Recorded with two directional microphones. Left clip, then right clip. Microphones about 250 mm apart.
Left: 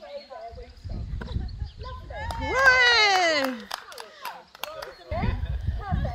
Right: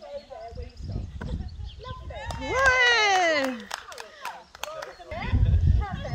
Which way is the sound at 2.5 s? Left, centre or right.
Centre.